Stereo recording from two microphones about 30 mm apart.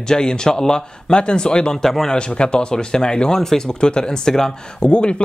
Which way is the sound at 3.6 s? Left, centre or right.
Left.